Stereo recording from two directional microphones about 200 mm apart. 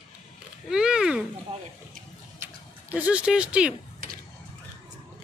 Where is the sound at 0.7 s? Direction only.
5° right (ahead or behind).